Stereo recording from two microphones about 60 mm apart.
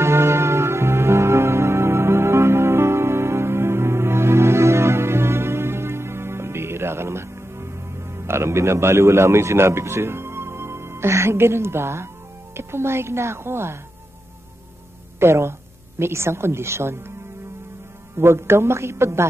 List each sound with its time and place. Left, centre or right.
0.0 s music: right
12.5 s a woman's voice: right
15.1 s a woman's voice: right
18.1 s a woman's voice: right